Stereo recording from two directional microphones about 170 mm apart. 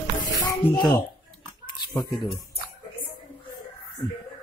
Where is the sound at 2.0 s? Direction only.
25° left (ahead or behind).